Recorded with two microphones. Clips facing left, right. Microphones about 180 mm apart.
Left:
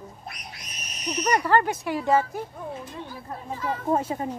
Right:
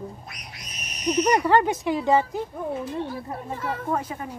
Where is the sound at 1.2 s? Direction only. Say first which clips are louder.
Right 2 dB; 20° right (ahead or behind).